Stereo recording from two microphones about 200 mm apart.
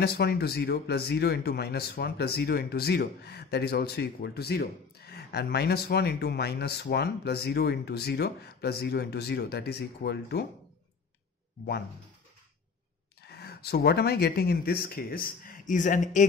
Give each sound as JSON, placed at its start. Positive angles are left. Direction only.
{"t": 0.0, "sound": "speech", "side_deg": 50}
{"t": 13.3, "sound": "speech", "side_deg": 55}